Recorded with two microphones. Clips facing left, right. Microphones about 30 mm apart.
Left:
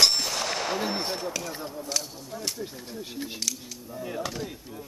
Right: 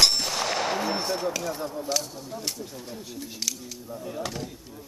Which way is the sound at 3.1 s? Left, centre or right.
Left.